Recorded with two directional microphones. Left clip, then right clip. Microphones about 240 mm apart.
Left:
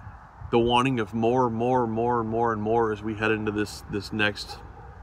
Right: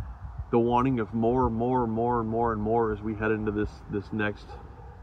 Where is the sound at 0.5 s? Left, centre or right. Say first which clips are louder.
Left 2 dB; centre.